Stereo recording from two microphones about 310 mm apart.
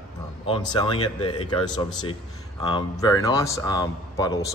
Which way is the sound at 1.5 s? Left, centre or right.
Centre.